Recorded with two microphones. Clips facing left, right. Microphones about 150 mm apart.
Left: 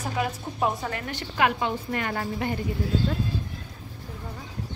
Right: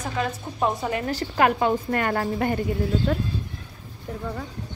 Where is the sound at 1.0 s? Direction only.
40° right (ahead or behind).